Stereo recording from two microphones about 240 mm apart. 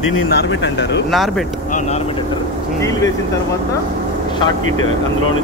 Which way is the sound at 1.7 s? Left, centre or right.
Left.